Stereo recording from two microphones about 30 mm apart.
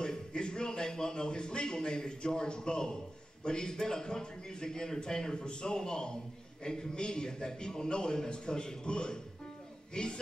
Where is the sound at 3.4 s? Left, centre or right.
Left.